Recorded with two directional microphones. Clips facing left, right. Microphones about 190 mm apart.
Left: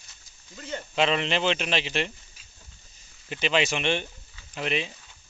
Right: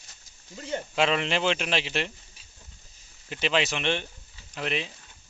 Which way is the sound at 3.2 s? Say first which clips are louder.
Left 1 dB; centre (ahead or behind).